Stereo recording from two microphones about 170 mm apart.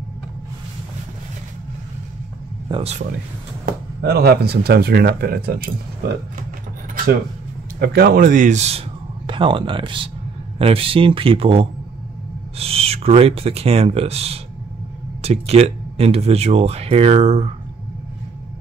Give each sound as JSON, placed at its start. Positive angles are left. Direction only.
{"t": 2.7, "sound": "speech", "side_deg": -40}
{"t": 4.0, "sound": "speech", "side_deg": -70}
{"t": 7.8, "sound": "a man's voice", "side_deg": -60}
{"t": 9.3, "sound": "speech", "side_deg": -30}